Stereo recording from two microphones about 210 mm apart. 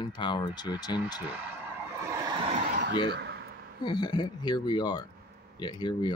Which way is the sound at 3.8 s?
20° left (ahead or behind).